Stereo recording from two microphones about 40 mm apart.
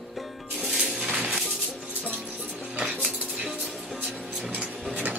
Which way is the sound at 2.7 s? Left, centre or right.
Right.